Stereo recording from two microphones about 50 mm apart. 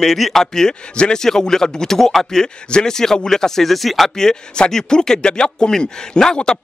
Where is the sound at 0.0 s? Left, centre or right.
Centre.